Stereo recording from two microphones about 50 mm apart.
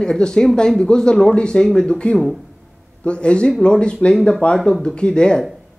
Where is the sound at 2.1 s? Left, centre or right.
Centre.